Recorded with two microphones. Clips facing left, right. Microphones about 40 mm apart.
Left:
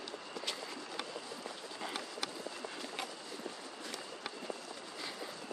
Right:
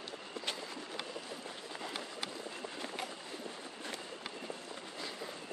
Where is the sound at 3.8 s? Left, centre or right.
Right.